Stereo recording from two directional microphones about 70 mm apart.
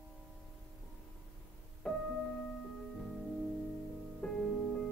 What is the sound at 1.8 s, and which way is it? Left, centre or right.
Music, centre.